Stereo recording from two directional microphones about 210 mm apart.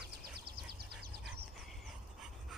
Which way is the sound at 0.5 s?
50° right (ahead or behind).